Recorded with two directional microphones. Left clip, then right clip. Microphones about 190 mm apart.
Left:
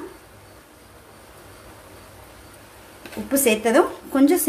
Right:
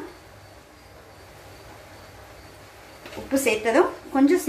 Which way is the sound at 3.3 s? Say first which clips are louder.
Left 2 dB; 70° left (ahead or behind).